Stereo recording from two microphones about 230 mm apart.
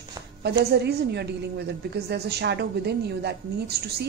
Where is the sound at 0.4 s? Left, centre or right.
Right.